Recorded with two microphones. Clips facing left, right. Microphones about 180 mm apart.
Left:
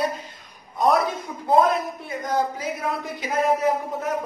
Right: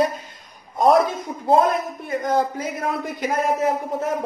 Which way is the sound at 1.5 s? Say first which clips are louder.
Right 1 dB; 50° right (ahead or behind).